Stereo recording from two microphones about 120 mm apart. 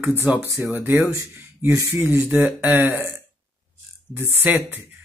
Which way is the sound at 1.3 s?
25° right (ahead or behind).